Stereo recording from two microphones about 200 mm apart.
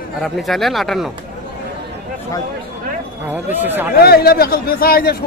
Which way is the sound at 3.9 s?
50° left (ahead or behind).